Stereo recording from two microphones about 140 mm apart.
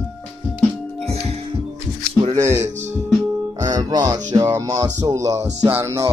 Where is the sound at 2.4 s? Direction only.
20° right (ahead or behind).